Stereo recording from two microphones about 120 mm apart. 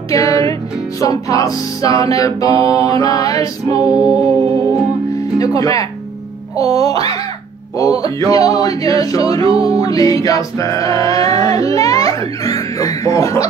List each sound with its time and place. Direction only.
0.1 s music: 30° left (ahead or behind)
5.4 s speech: 30° left (ahead or behind)
6.5 s music: 30° left (ahead or behind)
7.8 s male singing: 30° left (ahead or behind)